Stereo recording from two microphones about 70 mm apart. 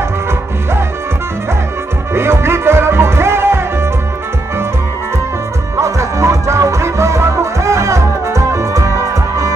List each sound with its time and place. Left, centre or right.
2.1 s music: right
5.8 s music: right